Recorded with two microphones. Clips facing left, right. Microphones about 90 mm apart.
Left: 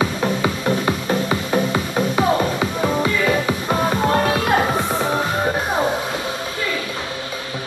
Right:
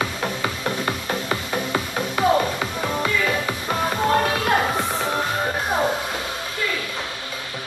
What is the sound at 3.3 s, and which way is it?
Music, 15° left (ahead or behind).